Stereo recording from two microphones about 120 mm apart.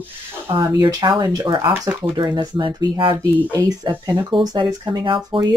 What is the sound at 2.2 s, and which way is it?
Speech, 45° right (ahead or behind).